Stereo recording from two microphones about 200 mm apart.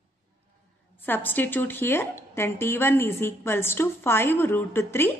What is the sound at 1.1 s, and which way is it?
Speech, 10° left (ahead or behind).